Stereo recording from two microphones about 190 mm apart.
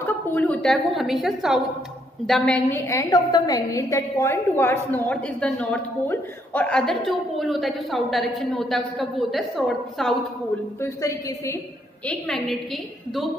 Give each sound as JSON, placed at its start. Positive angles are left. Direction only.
{"t": 0.0, "sound": "a woman's voice", "side_deg": 10}
{"t": 2.9, "sound": "a woman's voice", "side_deg": 15}
{"t": 10.8, "sound": "a woman's voice", "side_deg": 15}
{"t": 12.1, "sound": "a woman's voice", "side_deg": 0}